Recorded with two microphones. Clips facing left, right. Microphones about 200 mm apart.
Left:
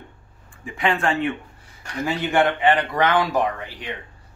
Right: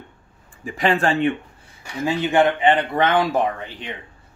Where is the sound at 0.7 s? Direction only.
35° right (ahead or behind).